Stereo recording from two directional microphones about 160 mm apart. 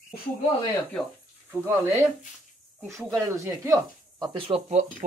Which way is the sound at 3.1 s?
15° right (ahead or behind).